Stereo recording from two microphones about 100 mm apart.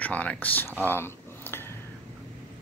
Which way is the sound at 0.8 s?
20° left (ahead or behind).